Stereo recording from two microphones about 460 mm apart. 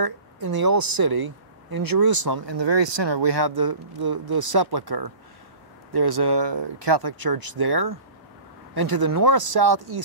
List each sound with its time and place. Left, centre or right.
0.0 s a woman's voice: right